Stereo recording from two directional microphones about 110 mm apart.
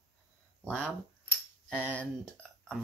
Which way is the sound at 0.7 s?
15° right (ahead or behind).